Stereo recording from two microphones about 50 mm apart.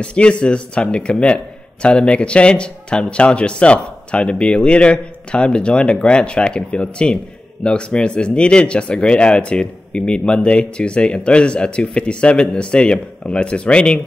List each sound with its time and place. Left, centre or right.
0.0 s speech: left